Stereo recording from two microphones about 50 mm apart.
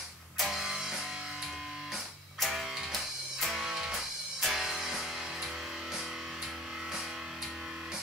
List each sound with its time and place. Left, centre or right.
0.4 s music: centre
2.4 s music: centre
3.6 s music: centre